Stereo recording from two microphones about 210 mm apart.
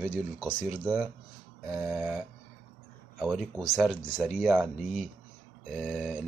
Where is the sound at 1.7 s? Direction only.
10° right (ahead or behind).